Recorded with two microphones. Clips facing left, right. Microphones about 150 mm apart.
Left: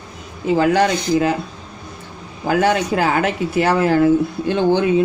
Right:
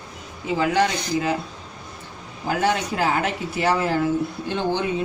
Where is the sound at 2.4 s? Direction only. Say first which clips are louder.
Left 6 dB; 70° left (ahead or behind).